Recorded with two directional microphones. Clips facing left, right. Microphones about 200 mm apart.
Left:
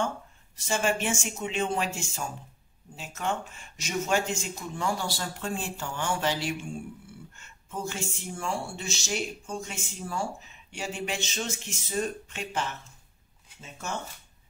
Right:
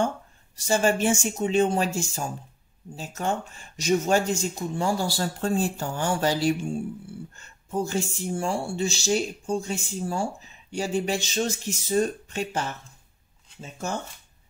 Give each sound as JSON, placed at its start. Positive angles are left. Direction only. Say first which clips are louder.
{"t": 0.6, "sound": "speech", "louder": "right 5 dB", "side_deg": -35}